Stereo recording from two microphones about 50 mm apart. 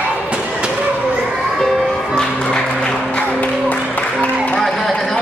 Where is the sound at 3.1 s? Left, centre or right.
Left.